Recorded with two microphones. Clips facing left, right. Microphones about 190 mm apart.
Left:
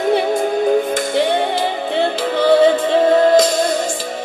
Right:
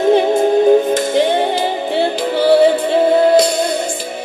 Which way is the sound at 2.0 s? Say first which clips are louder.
Right 1 dB; 5° right (ahead or behind).